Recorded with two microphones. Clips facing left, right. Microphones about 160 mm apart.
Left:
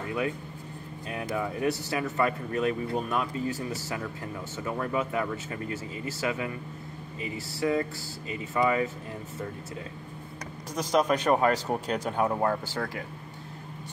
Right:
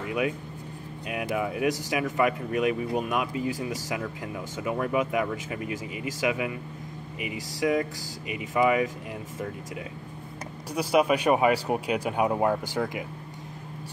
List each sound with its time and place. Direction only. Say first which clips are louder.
0.0 s vehicle: right 2 dB; 15° right (ahead or behind)
1.3 s speech: right 2 dB; 15° right (ahead or behind)
10.7 s speech: right 2 dB; 10° right (ahead or behind)